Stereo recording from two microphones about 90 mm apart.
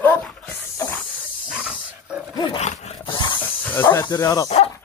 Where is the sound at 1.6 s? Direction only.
10° right (ahead or behind).